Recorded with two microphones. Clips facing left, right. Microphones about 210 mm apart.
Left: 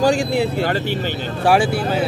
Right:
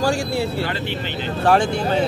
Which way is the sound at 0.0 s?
20° left (ahead or behind).